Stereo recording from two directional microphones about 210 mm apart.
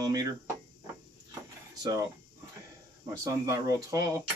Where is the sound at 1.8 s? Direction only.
15° right (ahead or behind).